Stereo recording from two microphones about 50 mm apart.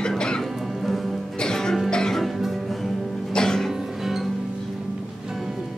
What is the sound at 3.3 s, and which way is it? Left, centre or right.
Music, centre.